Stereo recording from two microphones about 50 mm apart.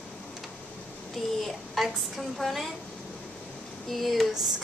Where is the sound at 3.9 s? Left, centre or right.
Centre.